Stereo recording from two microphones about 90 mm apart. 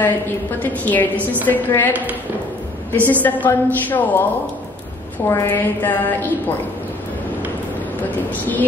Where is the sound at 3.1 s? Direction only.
20° left (ahead or behind).